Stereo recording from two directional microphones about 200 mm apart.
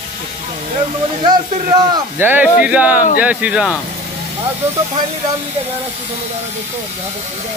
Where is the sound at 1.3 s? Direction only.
20° right (ahead or behind).